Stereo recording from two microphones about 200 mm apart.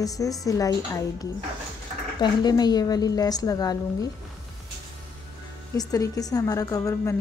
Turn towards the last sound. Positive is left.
turn(degrees=15)  # may be behind; listen again after turning